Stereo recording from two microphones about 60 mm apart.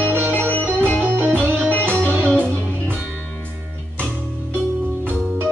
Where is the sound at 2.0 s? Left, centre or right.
Right.